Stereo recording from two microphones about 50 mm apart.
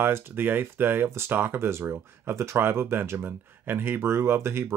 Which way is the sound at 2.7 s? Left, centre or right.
Right.